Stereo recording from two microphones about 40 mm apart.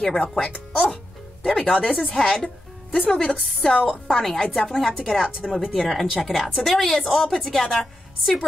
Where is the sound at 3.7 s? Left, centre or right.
Left.